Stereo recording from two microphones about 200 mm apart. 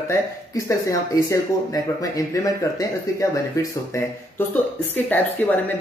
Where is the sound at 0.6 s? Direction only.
15° left (ahead or behind).